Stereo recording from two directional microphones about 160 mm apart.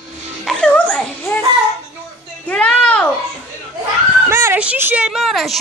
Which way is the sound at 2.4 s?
5° left (ahead or behind).